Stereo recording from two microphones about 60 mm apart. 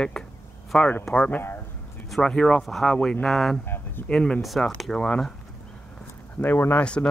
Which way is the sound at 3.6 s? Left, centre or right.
Left.